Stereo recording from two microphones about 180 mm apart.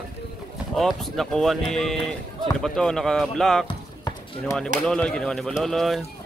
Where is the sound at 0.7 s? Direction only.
Centre (ahead or behind).